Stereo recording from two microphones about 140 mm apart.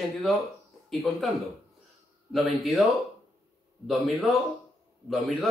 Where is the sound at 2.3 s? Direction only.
Centre (ahead or behind).